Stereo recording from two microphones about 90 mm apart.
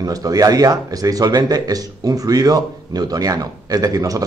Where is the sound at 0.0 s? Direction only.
45° right (ahead or behind).